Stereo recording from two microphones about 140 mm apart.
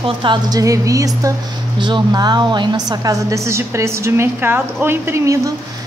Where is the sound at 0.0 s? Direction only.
35° right (ahead or behind).